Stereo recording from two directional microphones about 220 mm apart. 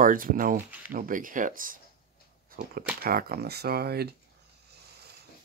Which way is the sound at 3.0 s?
45° right (ahead or behind).